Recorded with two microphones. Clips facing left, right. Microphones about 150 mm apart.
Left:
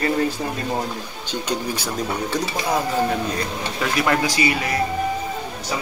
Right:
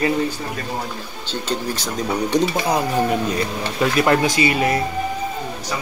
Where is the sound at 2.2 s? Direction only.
20° right (ahead or behind).